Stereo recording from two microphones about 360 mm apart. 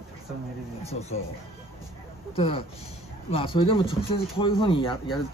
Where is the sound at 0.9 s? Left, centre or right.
Centre.